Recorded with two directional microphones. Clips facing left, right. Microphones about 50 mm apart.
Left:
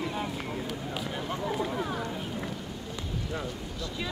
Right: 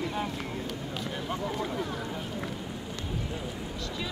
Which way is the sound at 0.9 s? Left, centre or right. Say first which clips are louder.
Even; centre.